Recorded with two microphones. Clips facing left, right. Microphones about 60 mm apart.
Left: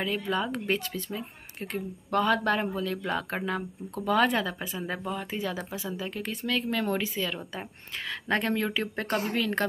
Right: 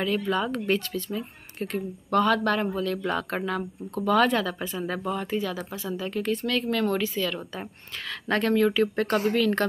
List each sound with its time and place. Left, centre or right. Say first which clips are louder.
0.0 s speech: right 3 dB; centre